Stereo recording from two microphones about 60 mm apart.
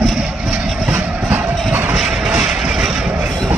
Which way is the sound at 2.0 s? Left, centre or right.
Centre.